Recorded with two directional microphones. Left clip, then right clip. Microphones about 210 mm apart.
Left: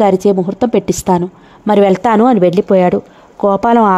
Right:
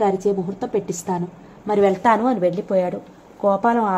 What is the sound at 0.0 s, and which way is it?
Speech, 45° left (ahead or behind).